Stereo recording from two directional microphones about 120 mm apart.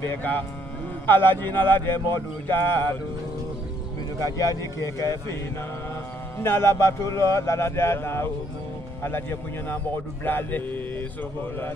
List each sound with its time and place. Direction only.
0.0 s a man's voice: 15° left (ahead or behind)
4.5 s speech: 25° left (ahead or behind)
6.4 s a man's voice: 20° left (ahead or behind)